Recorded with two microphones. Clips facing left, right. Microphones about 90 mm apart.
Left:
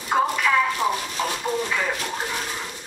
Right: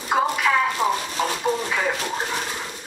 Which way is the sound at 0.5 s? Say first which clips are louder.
Even; 20° right (ahead or behind).